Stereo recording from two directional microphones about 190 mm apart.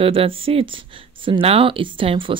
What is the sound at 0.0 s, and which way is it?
Speech, 30° right (ahead or behind).